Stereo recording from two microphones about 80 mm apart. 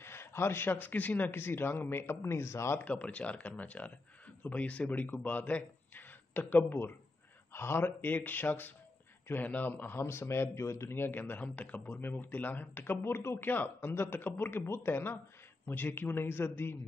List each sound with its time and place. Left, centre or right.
0.0 s speech: left
2.8 s a man's voice: centre